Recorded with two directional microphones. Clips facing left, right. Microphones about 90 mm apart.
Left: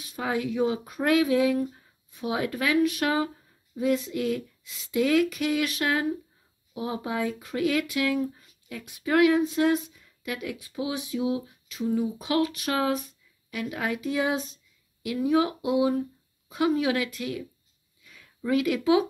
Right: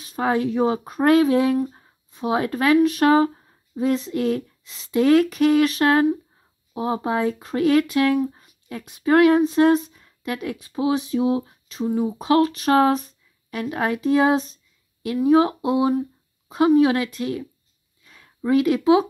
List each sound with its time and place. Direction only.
0.0 s speech: 40° right (ahead or behind)